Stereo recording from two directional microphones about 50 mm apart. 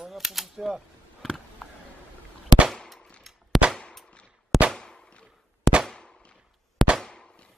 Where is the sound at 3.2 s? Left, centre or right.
Centre.